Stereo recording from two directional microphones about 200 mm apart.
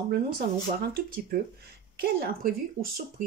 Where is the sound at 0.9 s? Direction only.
45° right (ahead or behind).